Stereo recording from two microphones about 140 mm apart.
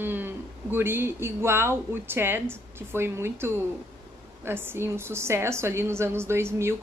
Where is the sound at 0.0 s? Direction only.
15° right (ahead or behind).